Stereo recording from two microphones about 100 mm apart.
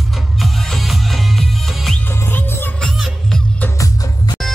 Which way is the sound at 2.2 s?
20° left (ahead or behind).